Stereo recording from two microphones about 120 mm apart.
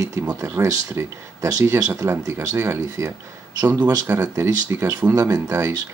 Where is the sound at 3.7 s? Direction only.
35° right (ahead or behind).